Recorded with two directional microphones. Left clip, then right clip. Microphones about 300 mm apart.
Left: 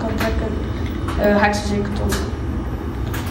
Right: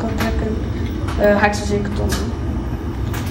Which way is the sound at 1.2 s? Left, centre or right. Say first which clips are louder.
Right 2 dB; centre.